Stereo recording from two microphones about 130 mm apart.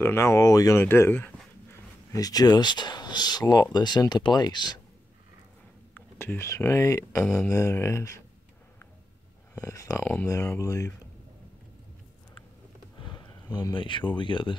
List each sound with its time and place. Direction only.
0.0 s speech: 20° left (ahead or behind)
2.1 s speech: 30° left (ahead or behind)
5.9 s speech: 15° left (ahead or behind)
9.6 s speech: 25° left (ahead or behind)
13.0 s a sound: 35° left (ahead or behind)
13.7 s speech: 40° left (ahead or behind)